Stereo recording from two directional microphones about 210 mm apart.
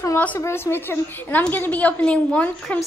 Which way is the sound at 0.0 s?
10° left (ahead or behind).